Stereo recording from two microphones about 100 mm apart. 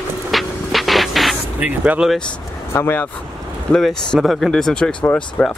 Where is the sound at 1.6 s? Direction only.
15° right (ahead or behind).